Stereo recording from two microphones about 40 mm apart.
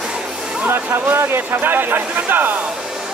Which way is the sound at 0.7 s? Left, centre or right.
Right.